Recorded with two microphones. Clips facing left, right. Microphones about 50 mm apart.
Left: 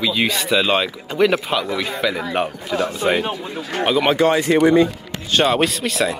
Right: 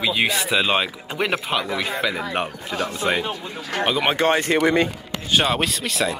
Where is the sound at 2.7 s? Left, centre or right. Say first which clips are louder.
Left 4 dB; left.